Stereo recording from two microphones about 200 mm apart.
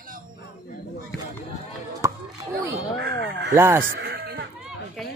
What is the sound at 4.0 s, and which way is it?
Goat, 55° right (ahead or behind).